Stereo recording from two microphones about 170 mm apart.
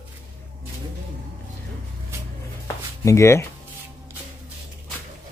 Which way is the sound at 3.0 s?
15° left (ahead or behind).